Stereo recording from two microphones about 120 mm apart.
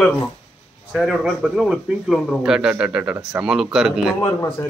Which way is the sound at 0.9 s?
5° right (ahead or behind).